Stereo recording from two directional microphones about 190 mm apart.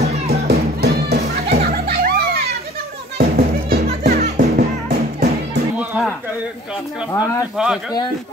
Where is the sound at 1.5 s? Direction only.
50° right (ahead or behind).